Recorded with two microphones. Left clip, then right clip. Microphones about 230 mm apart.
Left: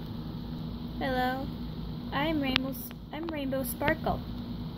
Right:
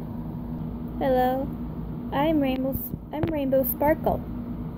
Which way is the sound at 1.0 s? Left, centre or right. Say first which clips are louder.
Right 8 dB; centre.